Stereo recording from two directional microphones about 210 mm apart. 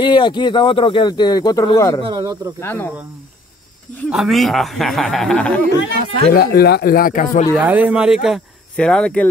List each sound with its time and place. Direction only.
0.0 s speech: 20° left (ahead or behind)
2.0 s speech: 20° right (ahead or behind)
2.6 s speech: 10° left (ahead or behind)
4.1 s speech: centre (ahead or behind)
6.3 s speech: 45° left (ahead or behind)
7.5 s speech: 10° right (ahead or behind)